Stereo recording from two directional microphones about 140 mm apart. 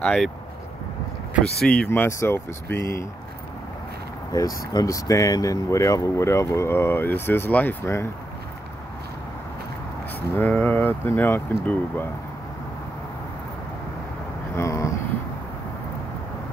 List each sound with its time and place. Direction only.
0.0 s speech: 5° left (ahead or behind)
1.9 s speech: 20° left (ahead or behind)
4.3 s speech: 25° left (ahead or behind)
10.3 s speech: 10° left (ahead or behind)
14.6 s vehicle: 25° left (ahead or behind)